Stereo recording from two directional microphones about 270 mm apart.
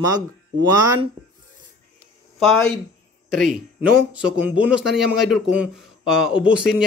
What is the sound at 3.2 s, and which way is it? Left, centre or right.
Speech, right.